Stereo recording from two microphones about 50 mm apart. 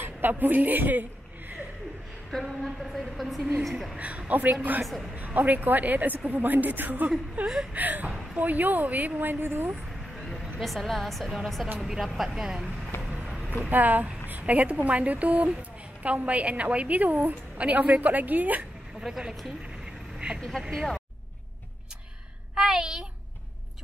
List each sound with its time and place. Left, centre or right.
0.0 s a woman's voice: right
2.4 s a woman's voice: centre
4.3 s a woman's voice: right
4.8 s a woman's voice: centre
5.1 s a woman's voice: right
10.6 s a woman's voice: centre
13.1 s vehicle: centre
13.7 s a woman's voice: right
18.9 s speech: centre
20.3 s speech: centre
22.6 s speech: centre